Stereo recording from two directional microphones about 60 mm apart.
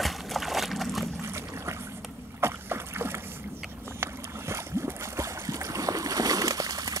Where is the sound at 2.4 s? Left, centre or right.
Right.